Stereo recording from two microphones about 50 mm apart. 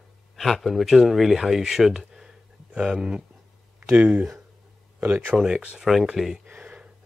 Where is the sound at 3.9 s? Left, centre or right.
Right.